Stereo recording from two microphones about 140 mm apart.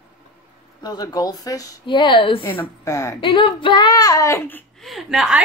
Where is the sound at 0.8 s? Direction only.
30° left (ahead or behind).